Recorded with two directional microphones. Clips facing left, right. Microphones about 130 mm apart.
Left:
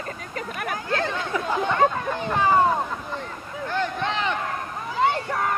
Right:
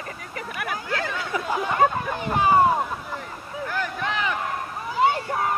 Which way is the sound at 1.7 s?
15° right (ahead or behind).